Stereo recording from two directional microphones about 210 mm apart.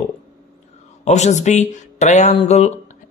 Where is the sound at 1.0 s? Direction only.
35° left (ahead or behind).